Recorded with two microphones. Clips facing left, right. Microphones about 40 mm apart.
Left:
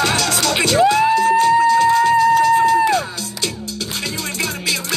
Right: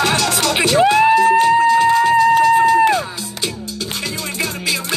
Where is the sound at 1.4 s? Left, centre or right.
Right.